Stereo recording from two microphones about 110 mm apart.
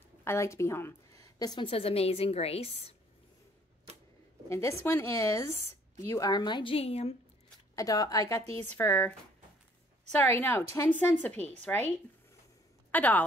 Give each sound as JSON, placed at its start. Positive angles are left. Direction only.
{"t": 0.2, "sound": "a woman's voice", "side_deg": 25}
{"t": 1.7, "sound": "a woman's voice", "side_deg": 65}
{"t": 4.5, "sound": "a woman's voice", "side_deg": 25}
{"t": 7.7, "sound": "a woman's voice", "side_deg": 35}
{"t": 10.2, "sound": "a woman's voice", "side_deg": 20}
{"t": 12.9, "sound": "a woman's voice", "side_deg": 15}